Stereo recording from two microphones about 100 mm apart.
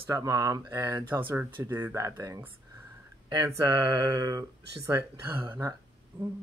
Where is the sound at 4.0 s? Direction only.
35° right (ahead or behind).